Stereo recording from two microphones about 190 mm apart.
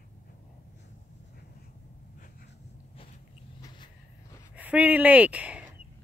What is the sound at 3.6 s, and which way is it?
Vehicle, 25° left (ahead or behind).